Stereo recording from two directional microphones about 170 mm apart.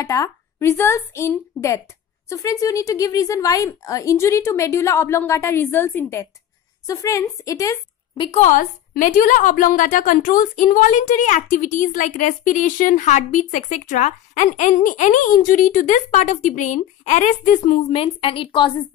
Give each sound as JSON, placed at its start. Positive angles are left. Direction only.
{"t": 0.0, "sound": "a woman's voice", "side_deg": 20}
{"t": 8.2, "sound": "a woman's voice", "side_deg": 35}
{"t": 8.5, "sound": "a woman's voice", "side_deg": 50}